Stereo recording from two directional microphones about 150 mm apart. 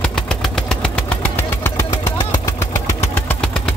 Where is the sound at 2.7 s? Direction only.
20° left (ahead or behind).